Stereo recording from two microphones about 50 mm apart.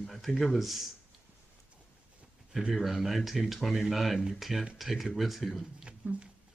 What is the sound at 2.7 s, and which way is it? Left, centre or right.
Speech, centre.